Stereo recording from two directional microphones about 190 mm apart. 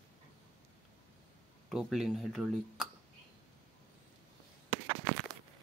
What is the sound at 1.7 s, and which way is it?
Speech, centre (ahead or behind).